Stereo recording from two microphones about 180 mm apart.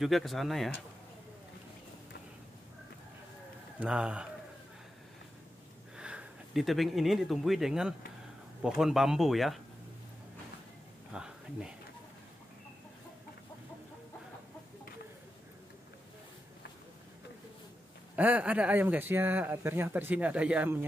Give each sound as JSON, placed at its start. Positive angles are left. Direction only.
{"t": 0.0, "sound": "speech", "side_deg": 0}
{"t": 3.8, "sound": "speech", "side_deg": -5}
{"t": 5.9, "sound": "speech", "side_deg": -5}
{"t": 11.1, "sound": "a sound", "side_deg": -5}
{"t": 18.1, "sound": "speech", "side_deg": -10}